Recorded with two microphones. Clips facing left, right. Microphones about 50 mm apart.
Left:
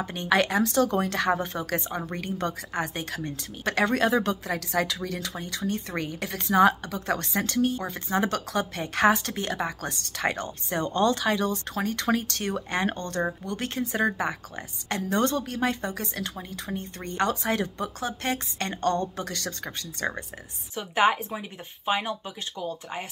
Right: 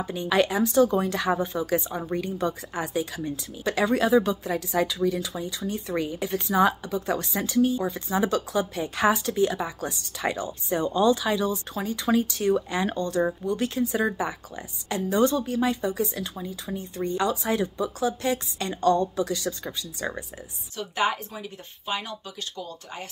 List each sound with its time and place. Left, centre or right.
0.0 s speech: left
20.7 s a woman's voice: left